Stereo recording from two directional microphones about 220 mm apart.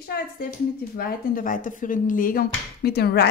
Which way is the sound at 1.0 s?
40° left (ahead or behind).